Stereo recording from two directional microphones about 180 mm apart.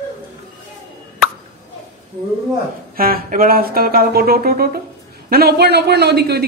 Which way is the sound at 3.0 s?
55° right (ahead or behind).